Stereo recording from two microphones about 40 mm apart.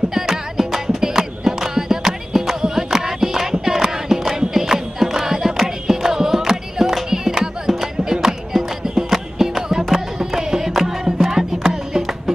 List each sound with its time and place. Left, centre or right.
0.1 s music: centre